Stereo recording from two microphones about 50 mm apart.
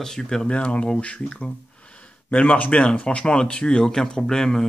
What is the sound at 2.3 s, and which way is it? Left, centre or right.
Speech, left.